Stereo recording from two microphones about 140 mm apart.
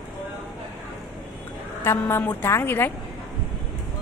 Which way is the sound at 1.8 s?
15° left (ahead or behind).